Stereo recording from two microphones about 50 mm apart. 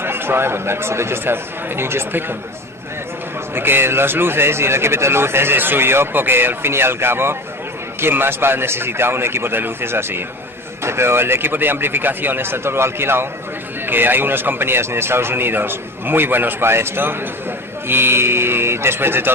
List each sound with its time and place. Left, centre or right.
0.0 s speech: right
3.5 s speech: right
13.8 s speech: right